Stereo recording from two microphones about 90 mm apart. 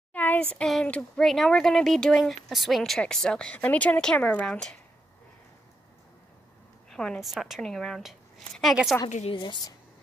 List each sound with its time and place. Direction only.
0.1 s speech: 20° left (ahead or behind)
6.9 s a woman's voice: 5° left (ahead or behind)
9.0 s a woman's voice: 60° left (ahead or behind)